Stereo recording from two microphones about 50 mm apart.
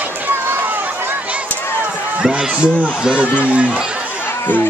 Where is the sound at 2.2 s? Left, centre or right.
Centre.